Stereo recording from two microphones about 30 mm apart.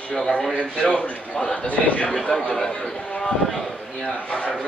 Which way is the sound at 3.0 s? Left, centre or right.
Left.